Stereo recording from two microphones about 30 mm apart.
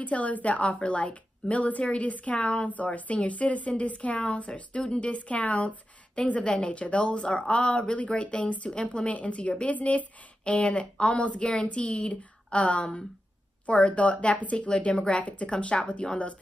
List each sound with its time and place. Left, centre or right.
0.0 s speech: left
10.4 s speech: left
11.3 s a woman's voice: left
11.7 s speech: left
14.4 s speech: left
15.0 s speech: left
15.2 s speech: left
15.7 s a woman's voice: left